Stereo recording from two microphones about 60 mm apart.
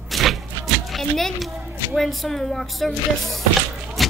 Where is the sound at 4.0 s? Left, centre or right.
Centre.